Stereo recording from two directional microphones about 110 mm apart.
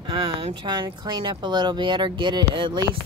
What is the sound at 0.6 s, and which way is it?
Speech, 40° right (ahead or behind).